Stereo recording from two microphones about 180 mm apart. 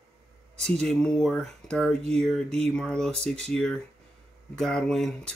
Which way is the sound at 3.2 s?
35° right (ahead or behind).